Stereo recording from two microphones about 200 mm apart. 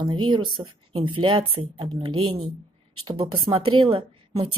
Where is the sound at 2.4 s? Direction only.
90° right.